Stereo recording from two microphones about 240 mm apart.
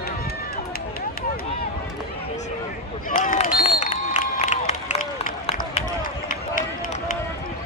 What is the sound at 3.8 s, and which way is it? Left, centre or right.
Run, left.